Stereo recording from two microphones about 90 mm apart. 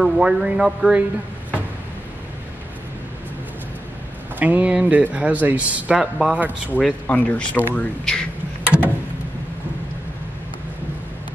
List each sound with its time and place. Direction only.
0.0 s speech: 5° right (ahead or behind)
4.4 s speech: 15° right (ahead or behind)
5.9 s speech: 5° right (ahead or behind)
6.8 s speech: 15° left (ahead or behind)
8.6 s a sound: 20° right (ahead or behind)